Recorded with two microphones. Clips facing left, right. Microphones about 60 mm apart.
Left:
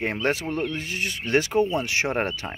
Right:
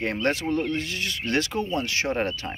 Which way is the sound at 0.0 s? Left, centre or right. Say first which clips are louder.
Even; centre.